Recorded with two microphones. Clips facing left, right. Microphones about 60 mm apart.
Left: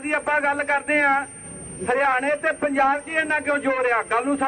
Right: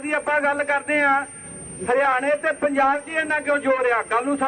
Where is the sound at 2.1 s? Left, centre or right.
Left.